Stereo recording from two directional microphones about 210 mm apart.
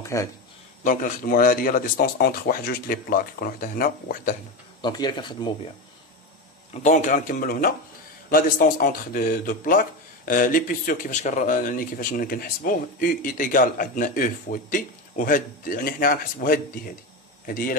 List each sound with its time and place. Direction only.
0.0 s speech: 15° left (ahead or behind)
0.8 s speech: 40° left (ahead or behind)
4.8 s speech: 20° left (ahead or behind)
6.7 s speech: 35° left (ahead or behind)